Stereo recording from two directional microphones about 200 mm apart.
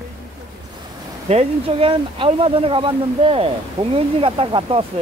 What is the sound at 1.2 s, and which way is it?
Speech, 30° right (ahead or behind).